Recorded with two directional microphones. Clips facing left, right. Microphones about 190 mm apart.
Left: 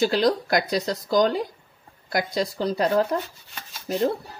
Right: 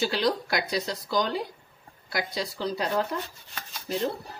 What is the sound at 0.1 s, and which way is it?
Speech, 45° left (ahead or behind).